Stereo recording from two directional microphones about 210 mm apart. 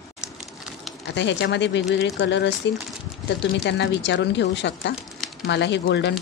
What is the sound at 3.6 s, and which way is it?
Speech, 55° left (ahead or behind).